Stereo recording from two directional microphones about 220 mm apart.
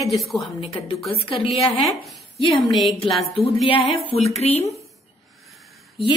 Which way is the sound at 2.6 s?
Centre (ahead or behind).